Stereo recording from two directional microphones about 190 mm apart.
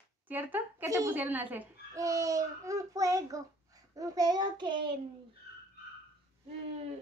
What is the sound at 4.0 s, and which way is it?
Child singing, 20° right (ahead or behind).